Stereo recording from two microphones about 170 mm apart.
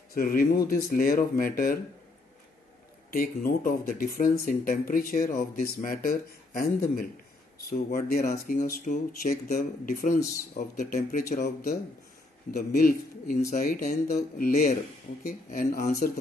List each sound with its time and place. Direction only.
0.1 s speech: 60° left (ahead or behind)
3.1 s speech: 60° left (ahead or behind)
8.6 s speech: 55° left (ahead or behind)
12.5 s speech: 60° left (ahead or behind)
15.7 s speech: 60° left (ahead or behind)